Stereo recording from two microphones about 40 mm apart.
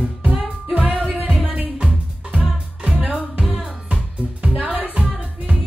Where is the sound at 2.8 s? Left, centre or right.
Right.